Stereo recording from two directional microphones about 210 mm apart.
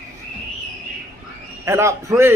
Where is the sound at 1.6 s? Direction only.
15° right (ahead or behind).